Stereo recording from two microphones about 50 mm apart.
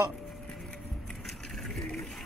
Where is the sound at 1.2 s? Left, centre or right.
Centre.